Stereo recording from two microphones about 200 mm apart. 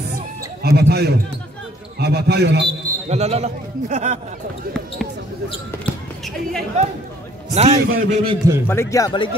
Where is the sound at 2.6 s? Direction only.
30° right (ahead or behind).